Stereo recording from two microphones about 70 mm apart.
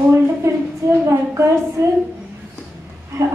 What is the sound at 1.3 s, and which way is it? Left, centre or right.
Speech, right.